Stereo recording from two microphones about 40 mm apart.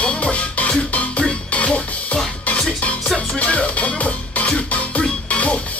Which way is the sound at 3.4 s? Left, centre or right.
Left.